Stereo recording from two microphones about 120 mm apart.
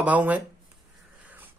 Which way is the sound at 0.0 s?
10° right (ahead or behind).